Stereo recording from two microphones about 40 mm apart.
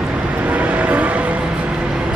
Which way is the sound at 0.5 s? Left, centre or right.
Right.